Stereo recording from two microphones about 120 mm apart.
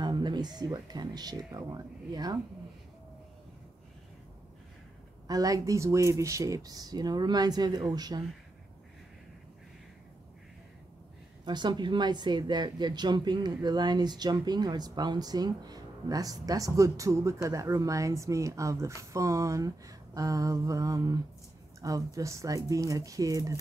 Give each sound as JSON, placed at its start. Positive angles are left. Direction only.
{"t": 0.0, "sound": "speech", "side_deg": -35}
{"t": 5.3, "sound": "speech", "side_deg": -30}
{"t": 11.4, "sound": "speech", "side_deg": -40}